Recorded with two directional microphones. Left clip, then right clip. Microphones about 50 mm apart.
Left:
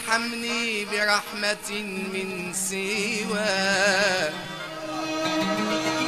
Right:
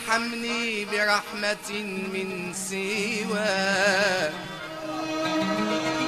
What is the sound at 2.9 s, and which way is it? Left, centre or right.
Music, left.